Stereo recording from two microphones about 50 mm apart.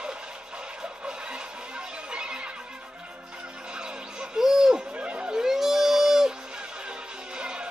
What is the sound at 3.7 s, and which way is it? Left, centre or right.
Music, centre.